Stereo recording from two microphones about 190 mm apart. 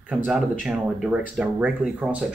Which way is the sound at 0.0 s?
5° right (ahead or behind).